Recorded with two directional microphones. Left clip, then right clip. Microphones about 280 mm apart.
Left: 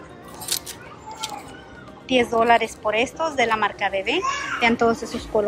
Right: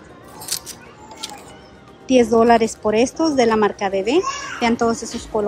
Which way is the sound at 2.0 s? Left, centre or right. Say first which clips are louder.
Right 4 dB; centre.